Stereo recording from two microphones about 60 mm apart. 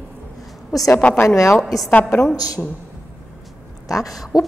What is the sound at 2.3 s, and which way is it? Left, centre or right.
Speech, left.